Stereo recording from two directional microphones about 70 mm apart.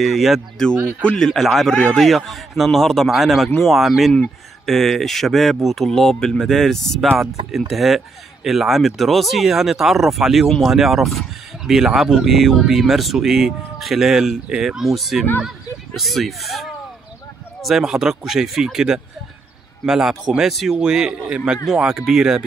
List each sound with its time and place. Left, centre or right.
0.0 s speech: centre
0.7 s speech: right
1.0 s speech: centre